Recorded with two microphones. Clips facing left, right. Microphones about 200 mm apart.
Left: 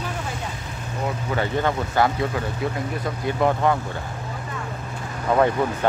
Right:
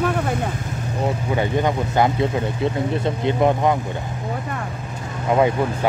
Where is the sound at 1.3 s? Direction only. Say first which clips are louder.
Right 1 dB; 15° right (ahead or behind).